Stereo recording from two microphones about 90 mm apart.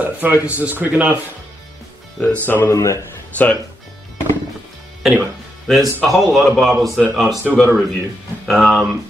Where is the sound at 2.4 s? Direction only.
20° left (ahead or behind).